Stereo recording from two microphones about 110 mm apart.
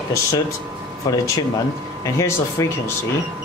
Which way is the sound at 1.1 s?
35° left (ahead or behind).